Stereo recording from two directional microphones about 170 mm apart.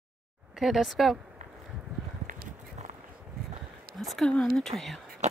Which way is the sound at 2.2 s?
50° right (ahead or behind).